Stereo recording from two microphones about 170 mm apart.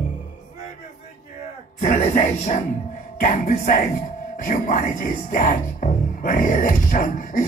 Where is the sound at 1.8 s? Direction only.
45° left (ahead or behind).